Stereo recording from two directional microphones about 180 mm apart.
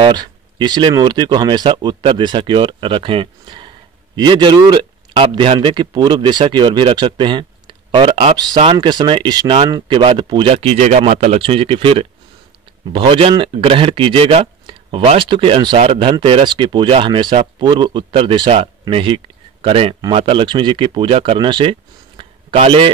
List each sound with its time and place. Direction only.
0.0 s speech: 25° right (ahead or behind)